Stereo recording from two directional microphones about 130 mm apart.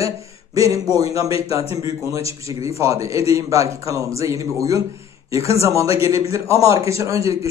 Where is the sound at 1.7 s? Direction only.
25° right (ahead or behind).